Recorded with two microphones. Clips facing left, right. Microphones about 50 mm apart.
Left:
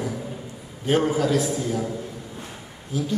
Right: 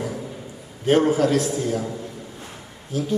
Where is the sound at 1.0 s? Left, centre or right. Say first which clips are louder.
Right 2 dB; right.